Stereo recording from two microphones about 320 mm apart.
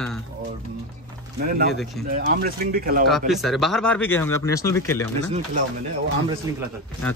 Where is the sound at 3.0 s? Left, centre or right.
Centre.